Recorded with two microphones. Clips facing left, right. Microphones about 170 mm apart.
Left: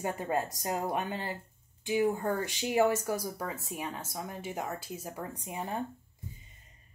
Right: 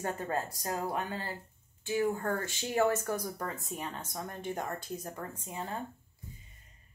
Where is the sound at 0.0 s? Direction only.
15° left (ahead or behind).